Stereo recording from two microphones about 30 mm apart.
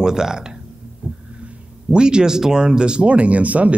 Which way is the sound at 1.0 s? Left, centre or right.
Right.